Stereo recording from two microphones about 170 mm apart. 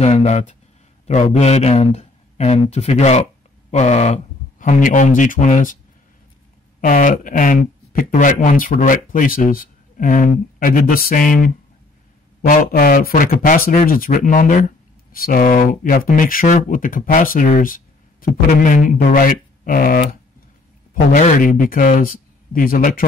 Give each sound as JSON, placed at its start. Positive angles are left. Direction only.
{"t": 0.0, "sound": "a man's voice", "side_deg": 40}
{"t": 6.8, "sound": "a man's voice", "side_deg": 50}
{"t": 20.9, "sound": "a man's voice", "side_deg": 45}